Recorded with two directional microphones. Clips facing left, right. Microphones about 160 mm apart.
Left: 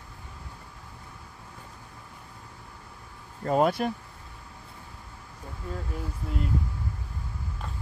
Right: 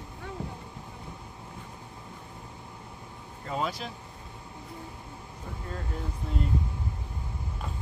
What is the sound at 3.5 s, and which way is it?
Vehicle, 55° left (ahead or behind).